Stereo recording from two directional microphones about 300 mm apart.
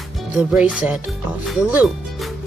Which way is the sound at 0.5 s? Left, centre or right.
Centre.